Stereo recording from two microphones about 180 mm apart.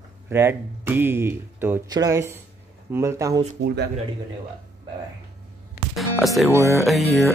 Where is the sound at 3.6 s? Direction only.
65° right (ahead or behind).